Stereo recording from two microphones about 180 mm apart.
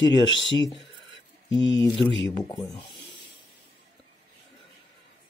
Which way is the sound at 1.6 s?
90° left.